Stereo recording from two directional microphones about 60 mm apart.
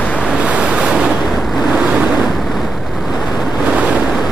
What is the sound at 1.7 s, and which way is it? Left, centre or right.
Waves, right.